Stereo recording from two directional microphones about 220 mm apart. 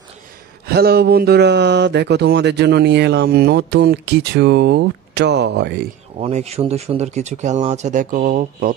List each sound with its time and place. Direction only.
0.7 s speech: 45° right (ahead or behind)
6.1 s speech: 30° right (ahead or behind)